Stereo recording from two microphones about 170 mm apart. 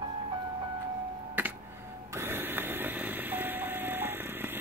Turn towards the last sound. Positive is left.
turn(degrees=-10)  # may be behind; listen again after turning